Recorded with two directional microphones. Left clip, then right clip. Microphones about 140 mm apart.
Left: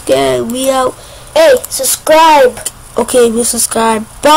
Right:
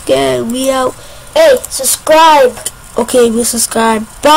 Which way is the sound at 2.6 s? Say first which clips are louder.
Even; 10° right (ahead or behind).